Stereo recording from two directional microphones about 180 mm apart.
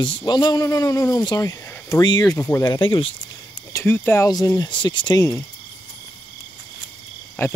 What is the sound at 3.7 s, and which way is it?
A man's voice, 10° left (ahead or behind).